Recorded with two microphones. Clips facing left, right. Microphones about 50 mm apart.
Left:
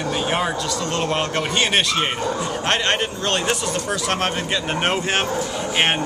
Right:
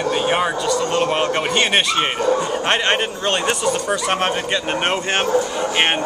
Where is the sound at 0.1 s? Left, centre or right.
Centre.